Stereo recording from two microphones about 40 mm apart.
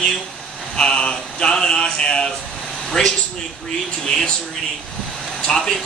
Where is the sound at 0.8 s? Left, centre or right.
Left.